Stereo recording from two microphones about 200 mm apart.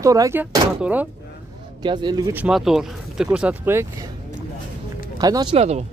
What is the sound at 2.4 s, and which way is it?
Speech, centre (ahead or behind).